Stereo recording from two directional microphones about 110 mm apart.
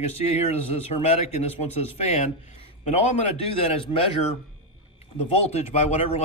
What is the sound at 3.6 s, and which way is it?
Speech, 60° left (ahead or behind).